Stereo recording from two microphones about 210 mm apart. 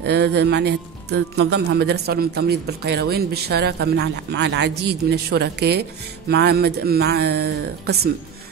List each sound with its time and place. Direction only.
0.0 s speech: 50° right (ahead or behind)